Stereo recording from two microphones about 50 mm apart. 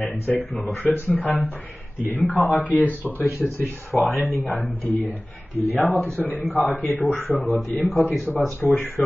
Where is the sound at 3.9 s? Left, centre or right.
Centre.